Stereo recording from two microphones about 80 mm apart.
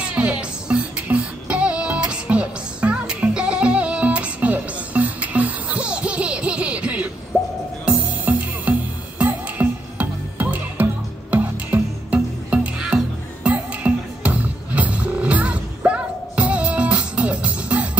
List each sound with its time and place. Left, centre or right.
0.0 s music: centre
7.3 s music: centre
7.8 s music: centre